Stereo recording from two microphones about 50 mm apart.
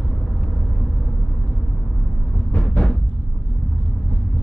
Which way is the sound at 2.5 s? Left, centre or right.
Centre.